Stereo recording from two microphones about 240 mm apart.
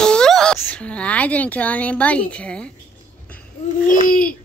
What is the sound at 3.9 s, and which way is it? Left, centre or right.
Speech, left.